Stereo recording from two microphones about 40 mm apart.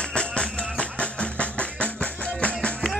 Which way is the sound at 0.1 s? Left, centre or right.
Left.